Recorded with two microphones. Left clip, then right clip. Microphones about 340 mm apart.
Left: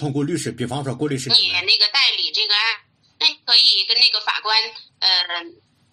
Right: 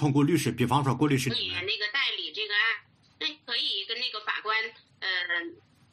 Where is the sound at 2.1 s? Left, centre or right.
Left.